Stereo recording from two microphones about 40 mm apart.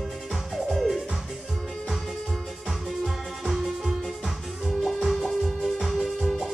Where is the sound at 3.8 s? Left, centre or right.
Centre.